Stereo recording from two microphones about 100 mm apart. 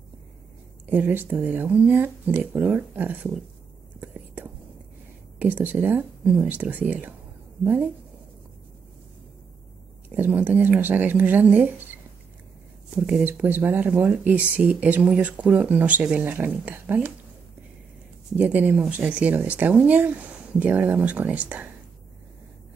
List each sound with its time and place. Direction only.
0.8 s speech: 20° right (ahead or behind)
4.0 s whispering: 15° right (ahead or behind)
5.4 s speech: 15° right (ahead or behind)
10.0 s speech: 15° right (ahead or behind)
18.3 s speech: 15° right (ahead or behind)